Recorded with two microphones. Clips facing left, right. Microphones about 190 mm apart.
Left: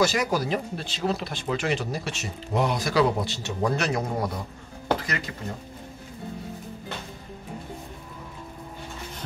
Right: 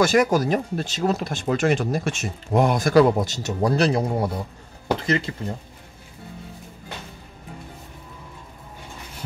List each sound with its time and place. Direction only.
0.0 s speech: 50° right (ahead or behind); by 5.3 s 25° right (ahead or behind)